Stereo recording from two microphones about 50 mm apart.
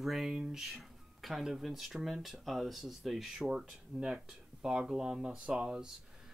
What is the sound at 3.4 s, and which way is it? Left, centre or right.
Speech, centre.